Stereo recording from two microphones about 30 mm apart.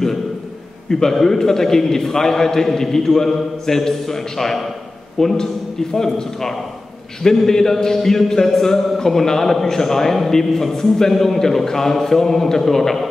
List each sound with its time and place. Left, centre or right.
0.8 s a man's voice: centre